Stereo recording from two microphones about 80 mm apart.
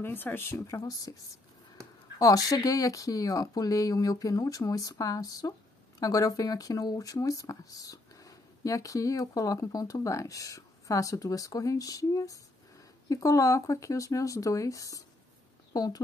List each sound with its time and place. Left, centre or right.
0.0 s speech: left
2.1 s speech: left